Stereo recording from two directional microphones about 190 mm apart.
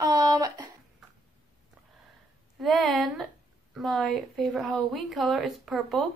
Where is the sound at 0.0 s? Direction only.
20° right (ahead or behind).